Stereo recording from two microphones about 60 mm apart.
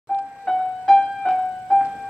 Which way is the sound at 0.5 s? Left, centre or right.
Centre.